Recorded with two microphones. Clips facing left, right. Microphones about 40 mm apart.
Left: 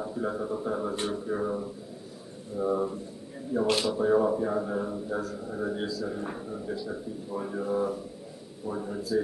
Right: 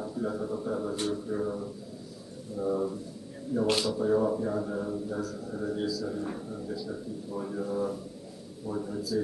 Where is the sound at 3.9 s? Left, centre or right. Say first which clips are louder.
Left 2 dB; left.